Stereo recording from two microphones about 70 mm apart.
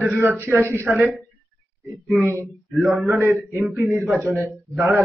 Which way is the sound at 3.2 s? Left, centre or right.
Right.